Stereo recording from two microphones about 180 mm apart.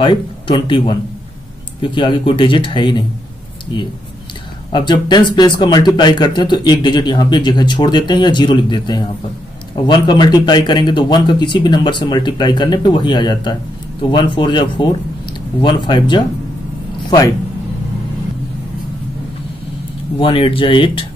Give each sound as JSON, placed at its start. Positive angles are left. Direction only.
{"t": 0.0, "sound": "speech", "side_deg": 25}
{"t": 4.7, "sound": "speech", "side_deg": 25}
{"t": 20.2, "sound": "speech", "side_deg": 30}